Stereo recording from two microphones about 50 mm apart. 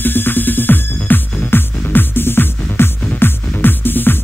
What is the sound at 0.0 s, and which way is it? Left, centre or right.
Music, left.